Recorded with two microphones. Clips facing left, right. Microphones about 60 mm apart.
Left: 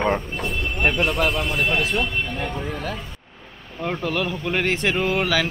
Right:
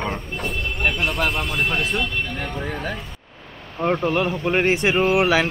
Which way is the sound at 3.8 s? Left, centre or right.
Right.